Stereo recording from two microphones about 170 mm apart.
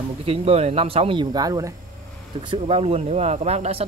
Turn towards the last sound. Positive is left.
turn(degrees=-40)  # may be behind; listen again after turning